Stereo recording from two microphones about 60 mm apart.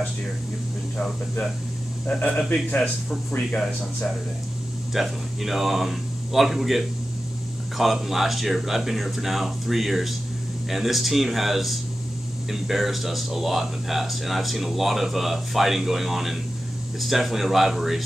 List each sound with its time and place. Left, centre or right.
2.0 s speech: left
4.9 s speech: centre